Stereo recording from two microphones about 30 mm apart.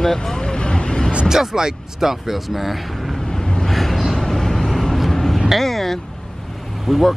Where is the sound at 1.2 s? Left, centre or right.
Centre.